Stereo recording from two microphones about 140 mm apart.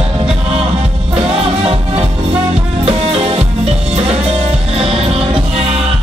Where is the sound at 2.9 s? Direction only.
45° right (ahead or behind).